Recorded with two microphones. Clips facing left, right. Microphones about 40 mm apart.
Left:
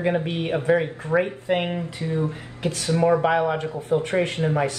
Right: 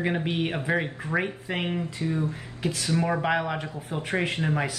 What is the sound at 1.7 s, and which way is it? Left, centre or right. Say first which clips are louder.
Speech: left 1 dB; left.